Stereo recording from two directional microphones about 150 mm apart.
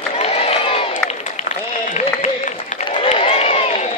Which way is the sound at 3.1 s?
40° left (ahead or behind).